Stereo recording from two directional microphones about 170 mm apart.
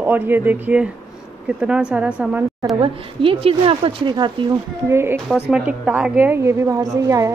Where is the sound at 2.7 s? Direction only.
30° right (ahead or behind).